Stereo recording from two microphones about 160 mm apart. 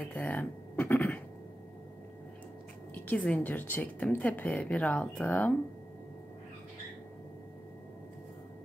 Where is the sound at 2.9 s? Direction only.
10° left (ahead or behind).